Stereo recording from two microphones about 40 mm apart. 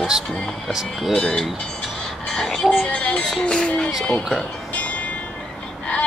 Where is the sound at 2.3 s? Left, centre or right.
Centre.